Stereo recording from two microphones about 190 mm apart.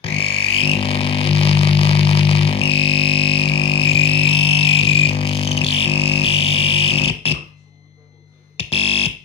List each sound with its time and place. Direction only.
0.0 s music: 30° left (ahead or behind)
8.5 s music: 30° left (ahead or behind)